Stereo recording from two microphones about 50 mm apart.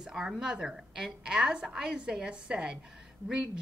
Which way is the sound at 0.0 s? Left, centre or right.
Centre.